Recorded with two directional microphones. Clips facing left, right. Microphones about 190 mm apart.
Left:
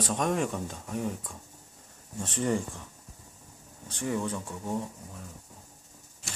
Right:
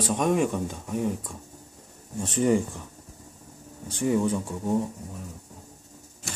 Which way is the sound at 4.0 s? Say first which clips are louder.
Right 7 dB; 15° right (ahead or behind).